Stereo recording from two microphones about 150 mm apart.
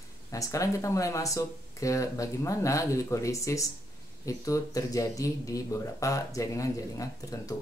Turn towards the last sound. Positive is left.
turn(degrees=20)  # may be behind; listen again after turning